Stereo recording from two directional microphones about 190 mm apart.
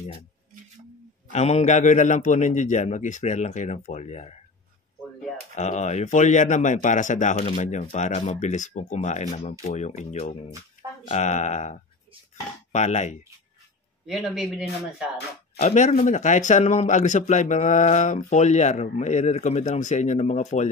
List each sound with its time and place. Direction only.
1.3 s a man's voice: 35° left (ahead or behind)
5.6 s a man's voice: 35° left (ahead or behind)
12.7 s a man's voice: 35° left (ahead or behind)
14.0 s speech: centre (ahead or behind)
15.6 s a man's voice: 35° left (ahead or behind)